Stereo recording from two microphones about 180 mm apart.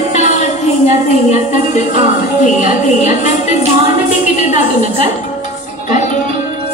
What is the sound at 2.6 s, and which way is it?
A woman's voice, 45° left (ahead or behind).